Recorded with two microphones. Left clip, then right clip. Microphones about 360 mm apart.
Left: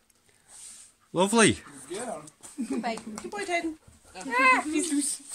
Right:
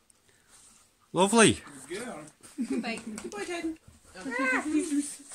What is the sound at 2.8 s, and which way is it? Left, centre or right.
Speech, centre.